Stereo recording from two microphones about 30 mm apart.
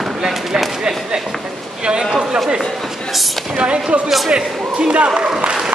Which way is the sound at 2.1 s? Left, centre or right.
Right.